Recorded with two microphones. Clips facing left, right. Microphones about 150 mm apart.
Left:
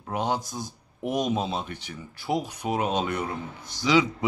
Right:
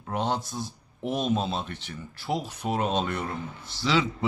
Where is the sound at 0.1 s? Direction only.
10° left (ahead or behind).